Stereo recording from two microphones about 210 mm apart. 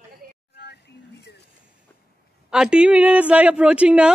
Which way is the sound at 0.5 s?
50° left (ahead or behind).